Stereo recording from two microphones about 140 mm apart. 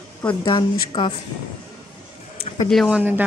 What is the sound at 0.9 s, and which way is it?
Speech, 30° left (ahead or behind).